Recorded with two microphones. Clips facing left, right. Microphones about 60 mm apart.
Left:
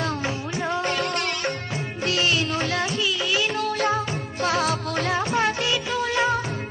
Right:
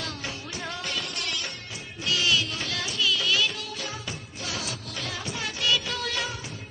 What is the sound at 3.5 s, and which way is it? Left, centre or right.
Music, left.